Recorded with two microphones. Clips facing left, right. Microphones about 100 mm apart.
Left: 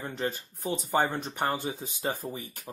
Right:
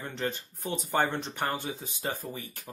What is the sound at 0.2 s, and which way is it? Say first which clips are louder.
Speech: left 1 dB; 5° left (ahead or behind).